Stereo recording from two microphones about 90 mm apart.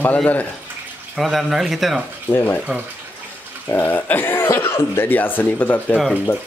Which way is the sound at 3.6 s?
20° left (ahead or behind).